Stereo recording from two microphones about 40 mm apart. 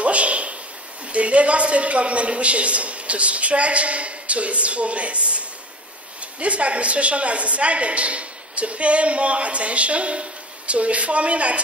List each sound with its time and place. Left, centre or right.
0.0 s a sound: right
1.1 s a man's voice: right
6.4 s a man's voice: right